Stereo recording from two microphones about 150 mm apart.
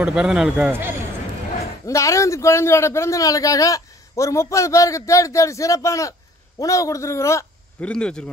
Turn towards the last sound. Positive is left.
turn(degrees=20)  # may be behind; listen again after turning